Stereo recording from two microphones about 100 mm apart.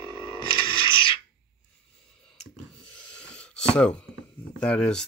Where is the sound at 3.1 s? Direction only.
10° left (ahead or behind).